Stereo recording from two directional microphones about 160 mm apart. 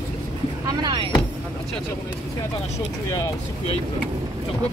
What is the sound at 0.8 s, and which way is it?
Vehicle, 30° right (ahead or behind).